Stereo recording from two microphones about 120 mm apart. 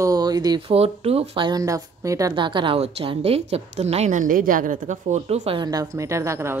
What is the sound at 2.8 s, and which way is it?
A woman's voice, 55° right (ahead or behind).